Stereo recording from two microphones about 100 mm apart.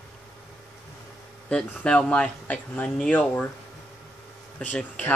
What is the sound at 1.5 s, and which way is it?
Speech, 10° left (ahead or behind).